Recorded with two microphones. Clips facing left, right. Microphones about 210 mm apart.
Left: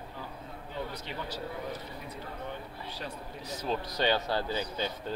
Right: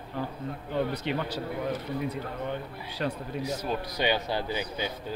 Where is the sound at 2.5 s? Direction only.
65° right (ahead or behind).